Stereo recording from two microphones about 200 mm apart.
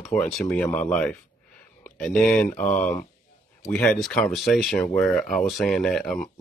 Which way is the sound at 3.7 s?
5° left (ahead or behind).